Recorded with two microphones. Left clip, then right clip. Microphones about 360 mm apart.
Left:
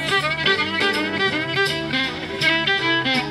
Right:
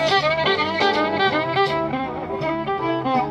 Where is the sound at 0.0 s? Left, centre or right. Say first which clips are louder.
Right 2 dB; centre.